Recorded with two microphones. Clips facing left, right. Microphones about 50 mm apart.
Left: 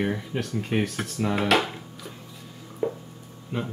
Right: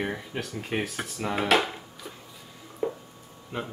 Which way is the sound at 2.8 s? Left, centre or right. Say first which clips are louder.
Left 2 dB; centre.